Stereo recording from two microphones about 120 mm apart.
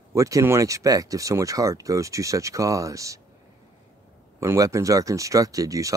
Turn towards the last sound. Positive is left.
turn(degrees=-30)  # may be behind; listen again after turning